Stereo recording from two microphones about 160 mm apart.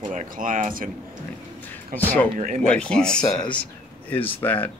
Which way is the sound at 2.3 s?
55° right (ahead or behind).